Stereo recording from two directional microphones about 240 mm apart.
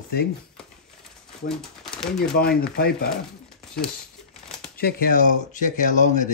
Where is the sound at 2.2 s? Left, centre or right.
Left.